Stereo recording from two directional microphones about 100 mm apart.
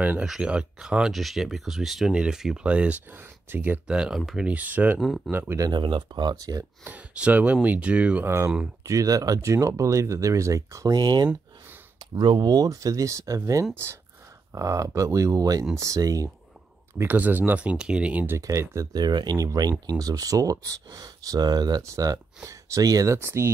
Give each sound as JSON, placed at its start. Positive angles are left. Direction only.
{"t": 0.0, "sound": "speech", "side_deg": -15}
{"t": 5.0, "sound": "speech", "side_deg": 0}
{"t": 5.3, "sound": "speech", "side_deg": -20}
{"t": 5.7, "sound": "speech", "side_deg": -50}
{"t": 6.8, "sound": "speech", "side_deg": -15}
{"t": 8.8, "sound": "speech", "side_deg": -35}
{"t": 17.0, "sound": "speech", "side_deg": -20}
{"t": 18.4, "sound": "speech", "side_deg": -30}
{"t": 18.9, "sound": "speech", "side_deg": -45}